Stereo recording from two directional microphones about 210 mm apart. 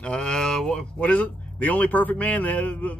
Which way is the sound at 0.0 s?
5° left (ahead or behind).